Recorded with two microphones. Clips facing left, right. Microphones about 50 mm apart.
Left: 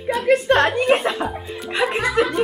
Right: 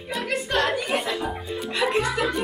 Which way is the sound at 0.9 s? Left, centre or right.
Left.